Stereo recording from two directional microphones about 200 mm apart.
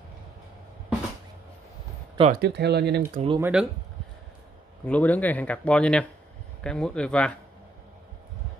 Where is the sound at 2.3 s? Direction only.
55° right (ahead or behind).